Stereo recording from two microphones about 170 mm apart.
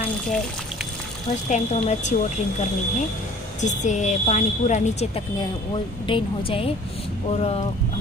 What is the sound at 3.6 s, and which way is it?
Speech, 45° left (ahead or behind).